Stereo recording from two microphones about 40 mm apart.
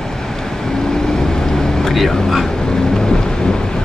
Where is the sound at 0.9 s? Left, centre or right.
Centre.